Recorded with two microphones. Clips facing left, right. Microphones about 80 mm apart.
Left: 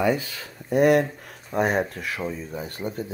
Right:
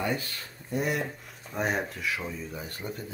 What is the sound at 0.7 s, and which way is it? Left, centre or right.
Speech, left.